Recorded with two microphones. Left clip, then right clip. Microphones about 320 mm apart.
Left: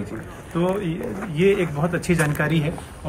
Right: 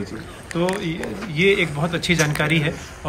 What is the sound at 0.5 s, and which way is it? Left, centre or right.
Speech, centre.